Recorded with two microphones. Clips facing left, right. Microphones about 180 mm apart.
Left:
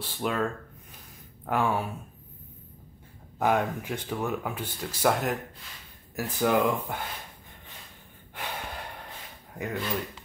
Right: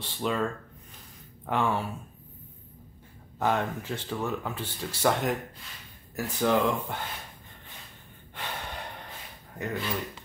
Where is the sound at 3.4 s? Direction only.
10° left (ahead or behind).